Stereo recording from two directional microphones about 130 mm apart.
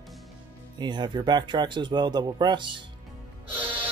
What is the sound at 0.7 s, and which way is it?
Speech, 35° right (ahead or behind).